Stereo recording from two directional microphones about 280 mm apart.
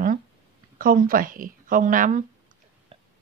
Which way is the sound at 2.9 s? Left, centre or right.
Centre.